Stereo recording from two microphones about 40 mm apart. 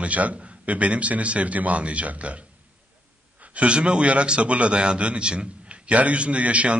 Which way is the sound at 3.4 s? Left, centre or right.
Right.